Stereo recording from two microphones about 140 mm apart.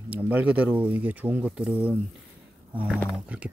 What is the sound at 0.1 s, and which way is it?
Speech, 10° right (ahead or behind).